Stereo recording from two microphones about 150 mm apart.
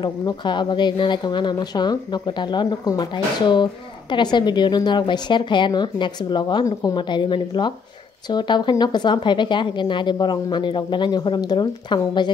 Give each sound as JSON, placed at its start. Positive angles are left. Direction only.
{"t": 0.0, "sound": "speech", "side_deg": 30}